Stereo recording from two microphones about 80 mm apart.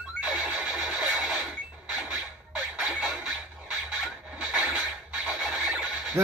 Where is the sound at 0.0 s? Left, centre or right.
Centre.